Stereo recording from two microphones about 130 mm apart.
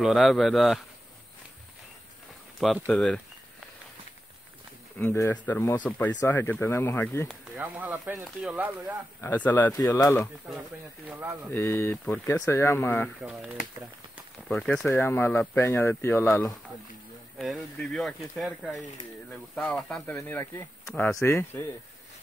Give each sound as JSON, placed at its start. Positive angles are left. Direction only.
{"t": 0.0, "sound": "speech", "side_deg": 0}
{"t": 2.6, "sound": "speech", "side_deg": 0}
{"t": 4.9, "sound": "speech", "side_deg": 20}
{"t": 7.2, "sound": "speech", "side_deg": -10}
{"t": 9.2, "sound": "speech", "side_deg": 15}
{"t": 9.8, "sound": "speech", "side_deg": 30}
{"t": 11.5, "sound": "speech", "side_deg": 20}
{"t": 13.2, "sound": "speech", "side_deg": -10}
{"t": 14.5, "sound": "speech", "side_deg": 5}
{"t": 14.9, "sound": "speech", "side_deg": 15}
{"t": 17.4, "sound": "speech", "side_deg": 0}